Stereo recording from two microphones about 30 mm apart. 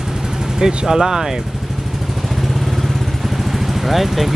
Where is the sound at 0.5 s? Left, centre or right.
Centre.